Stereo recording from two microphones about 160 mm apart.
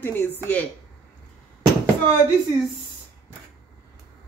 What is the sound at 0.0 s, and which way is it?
Speech, 10° left (ahead or behind).